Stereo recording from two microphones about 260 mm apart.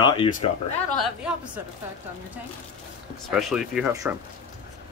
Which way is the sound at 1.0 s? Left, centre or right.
Centre.